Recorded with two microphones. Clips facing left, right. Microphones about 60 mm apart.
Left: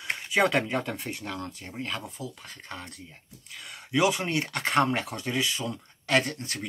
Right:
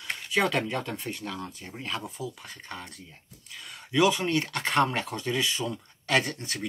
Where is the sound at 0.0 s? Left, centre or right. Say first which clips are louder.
Left 2 dB; centre.